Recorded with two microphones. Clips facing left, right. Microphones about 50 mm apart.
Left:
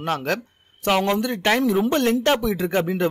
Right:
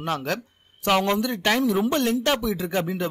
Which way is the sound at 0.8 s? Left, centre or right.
Centre.